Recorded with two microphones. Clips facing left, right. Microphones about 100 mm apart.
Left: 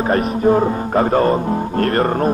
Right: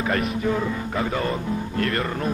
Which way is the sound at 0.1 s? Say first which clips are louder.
Left 10 dB; 40° left (ahead or behind).